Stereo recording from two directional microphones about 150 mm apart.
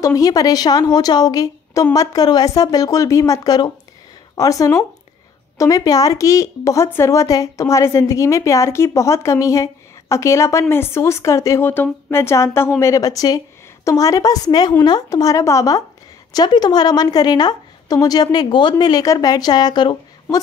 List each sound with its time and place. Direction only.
0.0 s speech: 25° left (ahead or behind)